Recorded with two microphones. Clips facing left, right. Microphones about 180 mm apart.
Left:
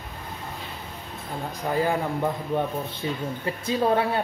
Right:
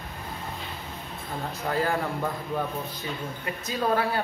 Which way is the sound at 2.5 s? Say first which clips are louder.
Left 4 dB; 25° left (ahead or behind).